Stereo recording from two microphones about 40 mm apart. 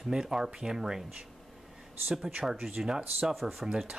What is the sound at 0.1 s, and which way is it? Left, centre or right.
Speech, centre.